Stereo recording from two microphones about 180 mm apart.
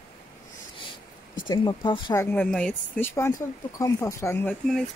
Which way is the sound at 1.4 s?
25° left (ahead or behind).